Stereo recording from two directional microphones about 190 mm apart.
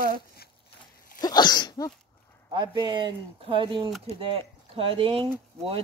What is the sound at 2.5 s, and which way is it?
Speech, 20° right (ahead or behind).